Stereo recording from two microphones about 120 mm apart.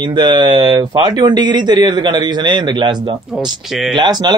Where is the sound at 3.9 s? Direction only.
40° right (ahead or behind).